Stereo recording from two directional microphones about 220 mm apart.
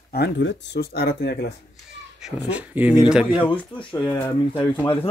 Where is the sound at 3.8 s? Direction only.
20° left (ahead or behind).